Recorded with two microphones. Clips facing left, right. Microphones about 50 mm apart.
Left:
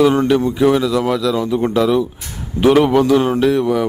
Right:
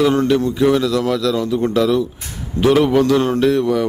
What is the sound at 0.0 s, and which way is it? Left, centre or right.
A man's voice, centre.